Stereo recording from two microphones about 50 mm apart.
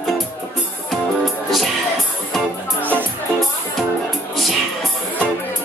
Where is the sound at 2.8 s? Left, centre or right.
Right.